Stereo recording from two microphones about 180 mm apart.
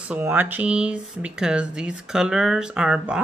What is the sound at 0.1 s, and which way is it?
Speech, 10° right (ahead or behind).